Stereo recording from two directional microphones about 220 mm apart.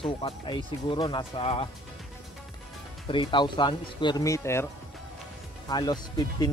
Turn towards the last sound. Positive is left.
turn(degrees=20)  # may be behind; listen again after turning